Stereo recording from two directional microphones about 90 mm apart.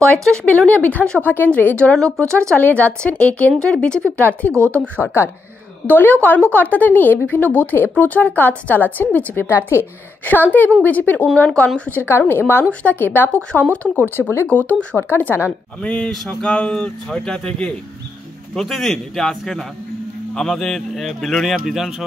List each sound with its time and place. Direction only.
0.0 s speech: 10° left (ahead or behind)
4.6 s speech: 30° right (ahead or behind)
4.9 s speech: 30° left (ahead or behind); by 21.9 s centre (ahead or behind)